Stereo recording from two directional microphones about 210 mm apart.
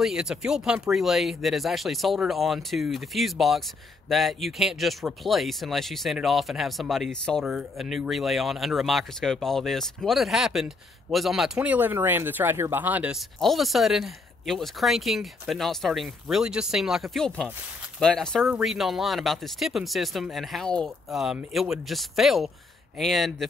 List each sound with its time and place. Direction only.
0.0 s speech: centre (ahead or behind)